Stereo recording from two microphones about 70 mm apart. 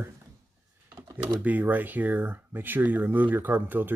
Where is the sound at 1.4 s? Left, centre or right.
Right.